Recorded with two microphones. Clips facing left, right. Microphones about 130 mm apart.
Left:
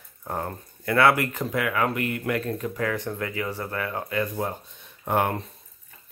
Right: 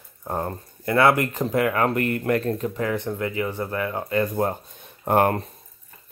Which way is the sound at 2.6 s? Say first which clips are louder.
Right 2 dB; 25° right (ahead or behind).